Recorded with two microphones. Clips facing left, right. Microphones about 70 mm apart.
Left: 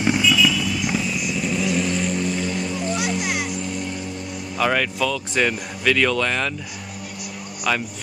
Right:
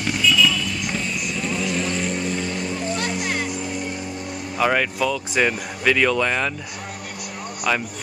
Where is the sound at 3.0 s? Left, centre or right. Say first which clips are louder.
Left 1 dB; centre.